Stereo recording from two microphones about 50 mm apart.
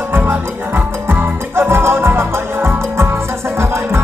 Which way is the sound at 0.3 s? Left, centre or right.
Right.